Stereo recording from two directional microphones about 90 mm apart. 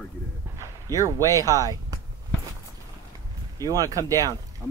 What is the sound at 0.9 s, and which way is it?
Speech, 40° right (ahead or behind).